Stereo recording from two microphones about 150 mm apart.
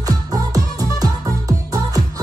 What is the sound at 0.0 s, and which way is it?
Music, 25° right (ahead or behind).